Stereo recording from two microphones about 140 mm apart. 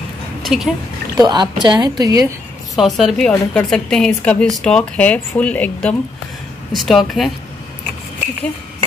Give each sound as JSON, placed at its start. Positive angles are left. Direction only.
{"t": 0.4, "sound": "speech", "side_deg": 0}
{"t": 1.1, "sound": "speech", "side_deg": -30}
{"t": 2.7, "sound": "a woman's voice", "side_deg": 0}